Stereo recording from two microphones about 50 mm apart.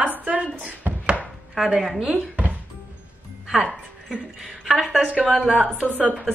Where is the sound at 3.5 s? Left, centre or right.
Right.